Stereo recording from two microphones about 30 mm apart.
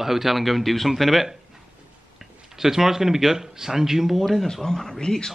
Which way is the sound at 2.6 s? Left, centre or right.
Centre.